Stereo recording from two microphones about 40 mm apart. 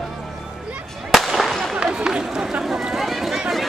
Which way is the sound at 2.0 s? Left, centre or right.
Centre.